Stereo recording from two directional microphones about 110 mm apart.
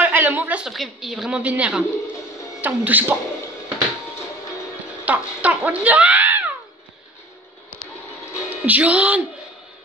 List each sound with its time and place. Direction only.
0.0 s a sound: 15° right (ahead or behind)
0.7 s a woman's voice: 5° right (ahead or behind)
5.0 s speech: 15° right (ahead or behind)
8.4 s speech: 15° right (ahead or behind)